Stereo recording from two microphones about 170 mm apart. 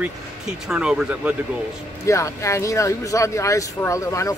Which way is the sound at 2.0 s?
15° left (ahead or behind).